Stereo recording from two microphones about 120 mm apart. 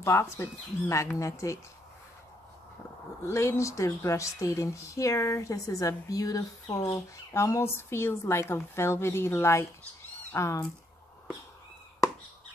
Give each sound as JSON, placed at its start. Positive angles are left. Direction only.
{"t": 0.0, "sound": "speech", "side_deg": 20}
{"t": 3.3, "sound": "speech", "side_deg": 25}